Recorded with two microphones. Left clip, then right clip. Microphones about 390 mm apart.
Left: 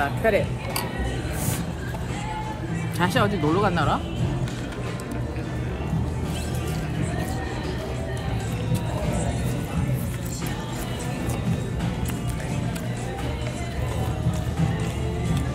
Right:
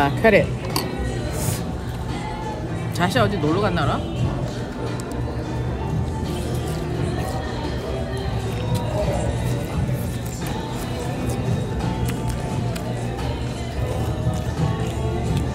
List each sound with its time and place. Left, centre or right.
0.0 s speech: right
3.0 s speech: centre